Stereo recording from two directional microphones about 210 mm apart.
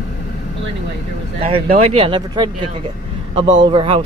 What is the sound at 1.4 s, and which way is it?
Speech, 30° right (ahead or behind).